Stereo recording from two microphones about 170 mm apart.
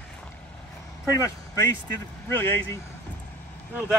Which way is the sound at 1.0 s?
20° left (ahead or behind).